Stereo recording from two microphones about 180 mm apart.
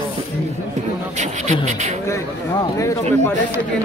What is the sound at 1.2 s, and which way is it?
Speech, 40° right (ahead or behind).